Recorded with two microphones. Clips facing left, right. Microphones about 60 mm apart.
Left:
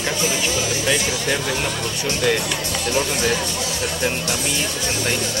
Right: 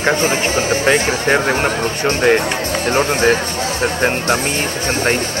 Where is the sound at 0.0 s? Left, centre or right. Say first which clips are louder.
Right 7 dB; right.